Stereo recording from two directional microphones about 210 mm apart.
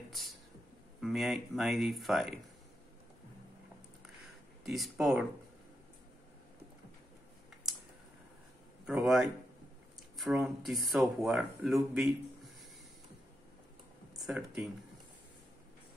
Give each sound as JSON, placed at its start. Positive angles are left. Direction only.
{"t": 1.0, "sound": "speech", "side_deg": 0}
{"t": 4.6, "sound": "speech", "side_deg": 0}
{"t": 8.8, "sound": "speech", "side_deg": -5}
{"t": 14.1, "sound": "speech", "side_deg": 0}